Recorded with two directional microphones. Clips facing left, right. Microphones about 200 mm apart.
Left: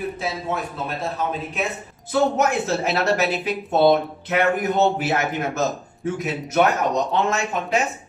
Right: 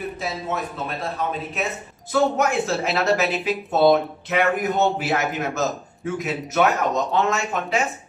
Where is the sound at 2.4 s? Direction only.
Centre (ahead or behind).